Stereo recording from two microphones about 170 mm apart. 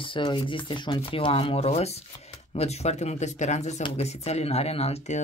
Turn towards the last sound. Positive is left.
turn(degrees=35)  # may be behind; listen again after turning